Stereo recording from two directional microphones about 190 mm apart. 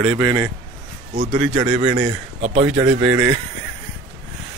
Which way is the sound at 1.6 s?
30° right (ahead or behind).